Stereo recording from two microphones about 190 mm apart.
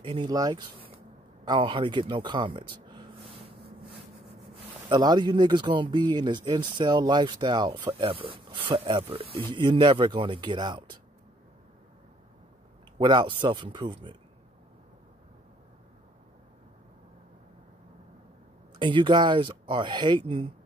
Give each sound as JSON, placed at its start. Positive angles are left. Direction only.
{"t": 0.0, "sound": "a man's voice", "side_deg": -25}
{"t": 4.8, "sound": "speech", "side_deg": -25}
{"t": 13.0, "sound": "speech", "side_deg": -25}
{"t": 18.8, "sound": "speech", "side_deg": -25}